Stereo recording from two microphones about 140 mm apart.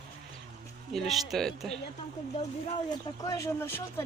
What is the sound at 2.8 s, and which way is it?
Speech, 25° left (ahead or behind).